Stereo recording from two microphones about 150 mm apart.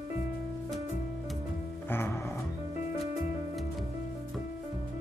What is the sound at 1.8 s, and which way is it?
Music, 15° left (ahead or behind).